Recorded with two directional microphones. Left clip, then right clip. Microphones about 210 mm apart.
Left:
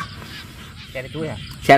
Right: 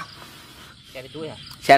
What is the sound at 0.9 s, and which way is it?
Speech, 25° right (ahead or behind).